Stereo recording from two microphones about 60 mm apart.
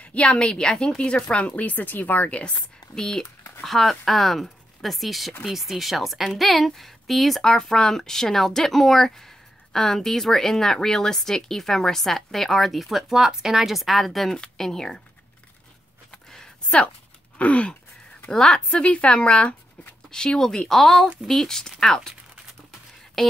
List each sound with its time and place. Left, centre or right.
0.0 s speech: centre
2.9 s speech: centre
16.1 s a sound: centre
17.4 s speech: left
23.2 s speech: centre